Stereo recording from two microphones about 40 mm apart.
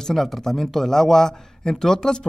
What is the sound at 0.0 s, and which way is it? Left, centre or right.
A man's voice, centre.